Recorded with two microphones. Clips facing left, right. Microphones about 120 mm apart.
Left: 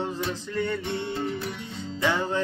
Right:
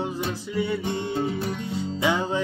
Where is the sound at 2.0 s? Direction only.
15° right (ahead or behind).